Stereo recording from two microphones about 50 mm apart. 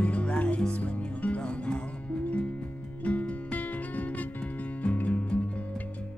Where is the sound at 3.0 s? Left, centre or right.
Left.